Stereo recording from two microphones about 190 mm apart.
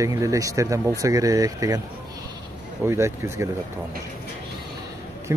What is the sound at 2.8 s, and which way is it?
Speech, 15° right (ahead or behind).